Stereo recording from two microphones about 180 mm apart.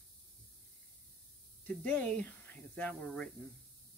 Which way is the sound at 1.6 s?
10° left (ahead or behind).